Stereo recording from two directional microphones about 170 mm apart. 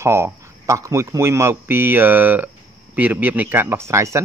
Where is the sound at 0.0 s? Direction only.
15° right (ahead or behind).